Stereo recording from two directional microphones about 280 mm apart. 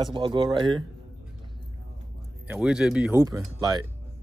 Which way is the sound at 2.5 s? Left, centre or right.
Centre.